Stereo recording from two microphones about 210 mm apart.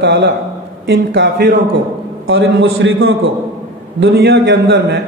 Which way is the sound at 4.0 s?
55° right (ahead or behind).